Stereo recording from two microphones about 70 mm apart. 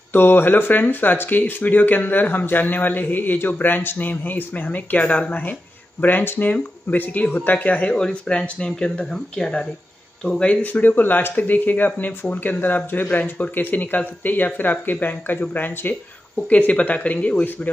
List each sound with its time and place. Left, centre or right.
0.1 s speech: left; by 10.5 s centre
10.5 s speech: left